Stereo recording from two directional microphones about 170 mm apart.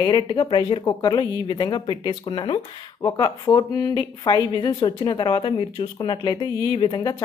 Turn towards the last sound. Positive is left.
turn(degrees=25)  # may be behind; listen again after turning